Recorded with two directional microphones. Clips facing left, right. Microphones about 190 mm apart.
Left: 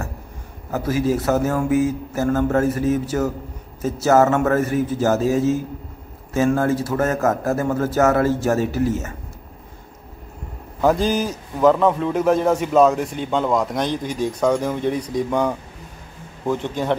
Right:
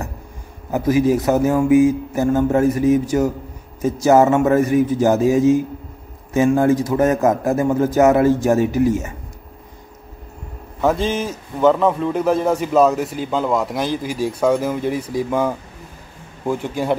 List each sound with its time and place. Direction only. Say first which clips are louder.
0.7 s a man's voice: right 5 dB; 15° right (ahead or behind)
10.8 s a man's voice: left 1 dB; centre (ahead or behind)